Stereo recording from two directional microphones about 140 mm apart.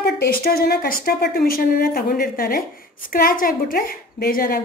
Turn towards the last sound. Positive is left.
turn(degrees=90)